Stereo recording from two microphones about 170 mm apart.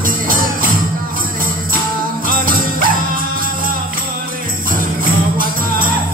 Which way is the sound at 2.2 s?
55° right (ahead or behind).